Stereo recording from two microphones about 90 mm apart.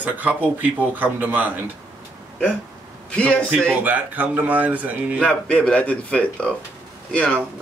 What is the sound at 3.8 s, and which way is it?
Speech, 20° right (ahead or behind).